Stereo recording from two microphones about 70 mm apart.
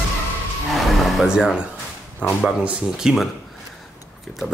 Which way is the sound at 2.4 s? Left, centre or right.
Centre.